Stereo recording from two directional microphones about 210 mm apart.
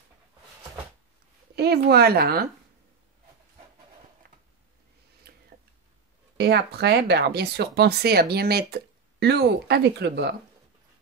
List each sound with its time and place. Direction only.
1.5 s a woman's voice: 50° right (ahead or behind)
5.3 s a sound: 45° right (ahead or behind)
6.3 s speech: 50° right (ahead or behind)